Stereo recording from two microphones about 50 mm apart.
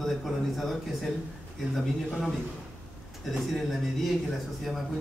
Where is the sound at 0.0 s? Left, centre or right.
Centre.